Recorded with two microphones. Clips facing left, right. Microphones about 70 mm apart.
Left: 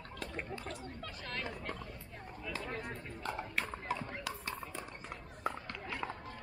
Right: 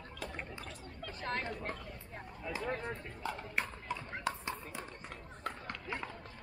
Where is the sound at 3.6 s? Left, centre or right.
Right.